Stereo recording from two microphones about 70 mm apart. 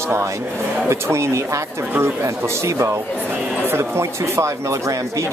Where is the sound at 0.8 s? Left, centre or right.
Right.